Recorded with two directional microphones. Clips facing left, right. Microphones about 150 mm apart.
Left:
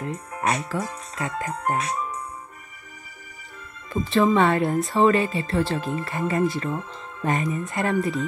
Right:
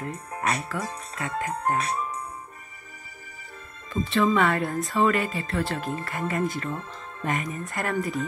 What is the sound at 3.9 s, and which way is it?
Speech, 35° left (ahead or behind).